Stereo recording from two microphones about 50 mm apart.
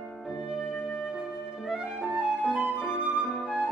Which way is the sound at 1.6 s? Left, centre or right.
Centre.